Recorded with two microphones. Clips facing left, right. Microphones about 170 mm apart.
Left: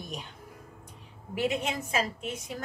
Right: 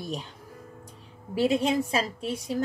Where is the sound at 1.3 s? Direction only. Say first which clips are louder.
Right 6 dB; 35° right (ahead or behind).